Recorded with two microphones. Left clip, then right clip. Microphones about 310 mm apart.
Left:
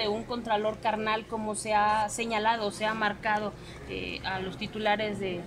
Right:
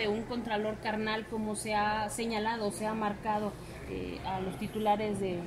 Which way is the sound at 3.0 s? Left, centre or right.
Left.